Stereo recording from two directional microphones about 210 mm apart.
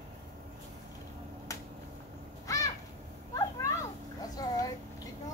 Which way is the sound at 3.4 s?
15° left (ahead or behind).